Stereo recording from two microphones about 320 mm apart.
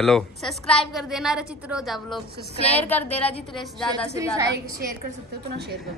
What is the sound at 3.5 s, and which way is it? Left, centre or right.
Speech, centre.